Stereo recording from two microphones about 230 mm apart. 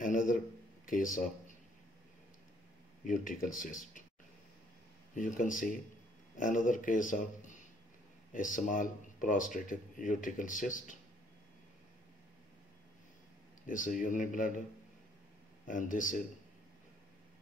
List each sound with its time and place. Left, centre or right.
0.0 s speech: left
3.1 s speech: left
5.1 s speech: left
13.7 s speech: left
15.6 s speech: left